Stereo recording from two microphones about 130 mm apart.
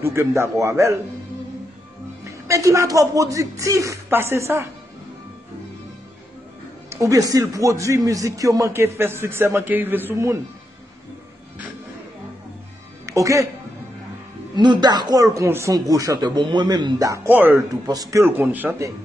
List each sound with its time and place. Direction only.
0.0 s speech: 20° right (ahead or behind)
2.2 s speech: 25° right (ahead or behind)
6.9 s speech: 25° right (ahead or behind)
13.0 s a woman's voice: 25° right (ahead or behind)
14.5 s speech: 35° right (ahead or behind)
17.3 s speech: 15° right (ahead or behind)
17.8 s speech: 30° right (ahead or behind)
18.2 s speech: 15° right (ahead or behind)